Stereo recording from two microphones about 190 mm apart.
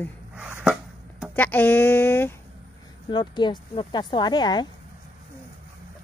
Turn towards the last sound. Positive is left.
turn(degrees=20)  # may be behind; listen again after turning